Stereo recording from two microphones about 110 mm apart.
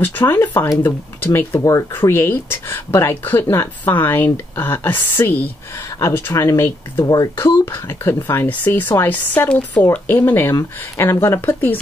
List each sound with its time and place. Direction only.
0.0 s speech: 20° left (ahead or behind)